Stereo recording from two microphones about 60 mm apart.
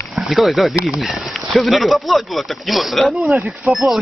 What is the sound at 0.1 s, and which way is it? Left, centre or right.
Speech, centre.